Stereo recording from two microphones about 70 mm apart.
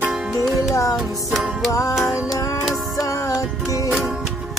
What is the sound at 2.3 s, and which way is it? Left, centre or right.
Music, left.